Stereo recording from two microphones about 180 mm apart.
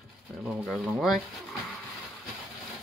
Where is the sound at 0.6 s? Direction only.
5° left (ahead or behind).